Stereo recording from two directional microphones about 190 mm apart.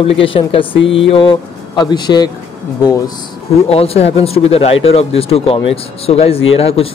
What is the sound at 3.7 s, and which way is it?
Speech, 30° left (ahead or behind).